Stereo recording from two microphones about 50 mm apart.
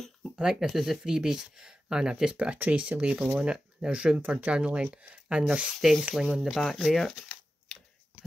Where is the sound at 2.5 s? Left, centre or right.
Right.